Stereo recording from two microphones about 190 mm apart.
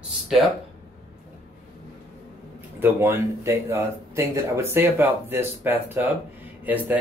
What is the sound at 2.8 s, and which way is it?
Speech, 10° right (ahead or behind).